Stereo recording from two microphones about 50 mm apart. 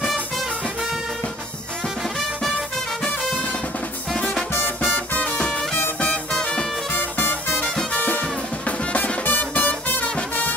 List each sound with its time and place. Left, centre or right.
4.1 s music: centre
4.6 s music: left
6.3 s music: centre
6.9 s music: left
7.9 s music: left